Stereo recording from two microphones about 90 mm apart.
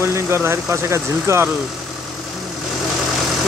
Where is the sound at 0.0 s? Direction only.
30° right (ahead or behind).